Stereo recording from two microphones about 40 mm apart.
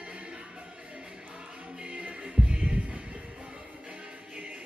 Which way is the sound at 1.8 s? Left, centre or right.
Right.